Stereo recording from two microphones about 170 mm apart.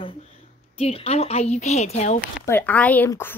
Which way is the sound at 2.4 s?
10° left (ahead or behind).